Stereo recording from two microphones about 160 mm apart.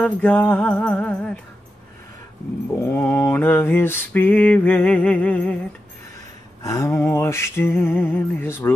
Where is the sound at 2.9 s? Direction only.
10° left (ahead or behind).